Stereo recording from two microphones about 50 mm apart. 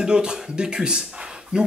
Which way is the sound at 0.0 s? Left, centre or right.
Centre.